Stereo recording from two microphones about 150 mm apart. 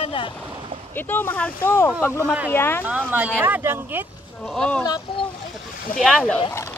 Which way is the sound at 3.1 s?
15° right (ahead or behind).